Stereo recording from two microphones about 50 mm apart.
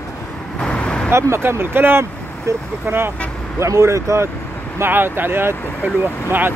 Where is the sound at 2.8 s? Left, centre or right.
Right.